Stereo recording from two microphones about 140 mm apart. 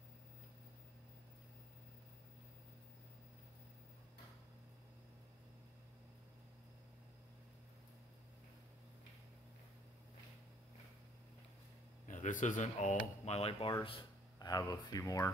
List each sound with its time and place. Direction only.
12.1 s speech: 65° left (ahead or behind); by 13.7 s 45° left (ahead or behind)
13.8 s speech: 35° left (ahead or behind)